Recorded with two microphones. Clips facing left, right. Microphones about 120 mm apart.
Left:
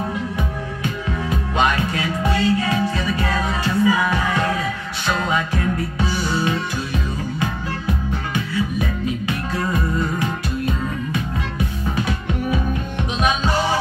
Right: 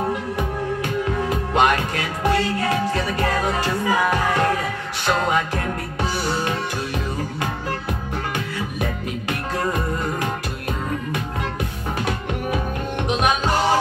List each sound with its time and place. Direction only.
0.8 s music: 50° right (ahead or behind)